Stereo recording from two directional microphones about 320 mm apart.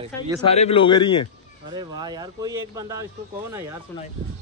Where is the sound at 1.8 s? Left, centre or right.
Centre.